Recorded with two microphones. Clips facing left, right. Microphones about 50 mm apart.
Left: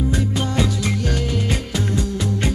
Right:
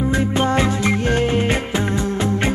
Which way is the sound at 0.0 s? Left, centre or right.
Right.